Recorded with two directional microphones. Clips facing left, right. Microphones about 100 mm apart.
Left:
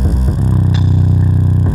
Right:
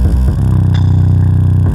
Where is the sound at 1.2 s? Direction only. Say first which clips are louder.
Right 1 dB; centre (ahead or behind).